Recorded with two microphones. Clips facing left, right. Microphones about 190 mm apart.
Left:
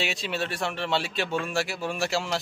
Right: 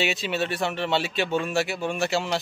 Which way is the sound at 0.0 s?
Centre (ahead or behind).